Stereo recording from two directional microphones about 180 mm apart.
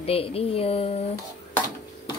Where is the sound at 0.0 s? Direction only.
35° left (ahead or behind).